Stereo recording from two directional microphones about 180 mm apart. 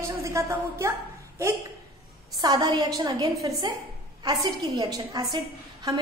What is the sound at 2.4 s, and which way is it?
A woman's voice, 20° right (ahead or behind).